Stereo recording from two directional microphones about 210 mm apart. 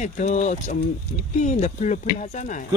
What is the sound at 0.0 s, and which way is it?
Speech, 35° left (ahead or behind).